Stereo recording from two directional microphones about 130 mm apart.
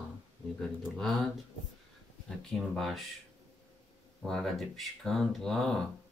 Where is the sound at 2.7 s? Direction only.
Centre (ahead or behind).